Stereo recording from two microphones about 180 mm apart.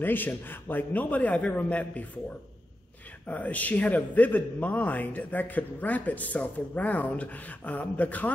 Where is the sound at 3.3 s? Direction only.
10° left (ahead or behind).